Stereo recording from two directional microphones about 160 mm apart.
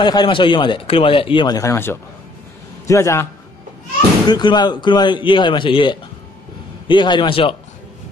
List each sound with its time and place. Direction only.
0.0 s a man's voice: 30° left (ahead or behind)
4.3 s speech: 25° left (ahead or behind)